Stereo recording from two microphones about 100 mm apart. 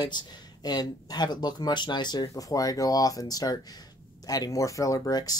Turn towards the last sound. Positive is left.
turn(degrees=40)  # may be behind; listen again after turning